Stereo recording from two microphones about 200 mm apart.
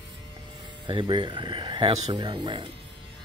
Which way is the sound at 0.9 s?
25° right (ahead or behind).